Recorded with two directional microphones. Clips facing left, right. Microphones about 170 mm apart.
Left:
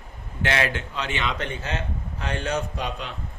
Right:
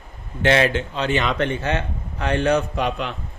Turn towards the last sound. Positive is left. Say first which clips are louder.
# right 7 dB
turn(degrees=-65)  # may be behind; listen again after turning